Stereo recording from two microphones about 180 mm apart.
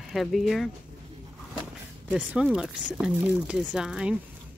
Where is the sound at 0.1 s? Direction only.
Centre (ahead or behind).